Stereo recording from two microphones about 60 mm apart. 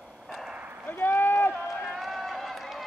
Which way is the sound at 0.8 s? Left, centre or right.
Left.